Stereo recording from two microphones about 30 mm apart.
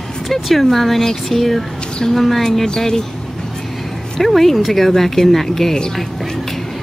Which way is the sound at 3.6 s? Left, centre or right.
Centre.